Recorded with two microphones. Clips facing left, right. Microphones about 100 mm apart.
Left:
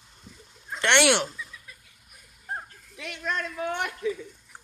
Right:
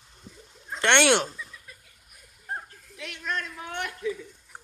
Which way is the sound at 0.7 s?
30° right (ahead or behind).